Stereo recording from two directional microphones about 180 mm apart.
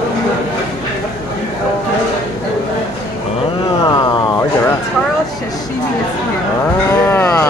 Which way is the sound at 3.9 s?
25° left (ahead or behind).